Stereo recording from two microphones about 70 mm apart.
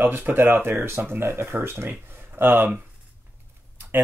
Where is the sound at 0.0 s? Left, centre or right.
Right.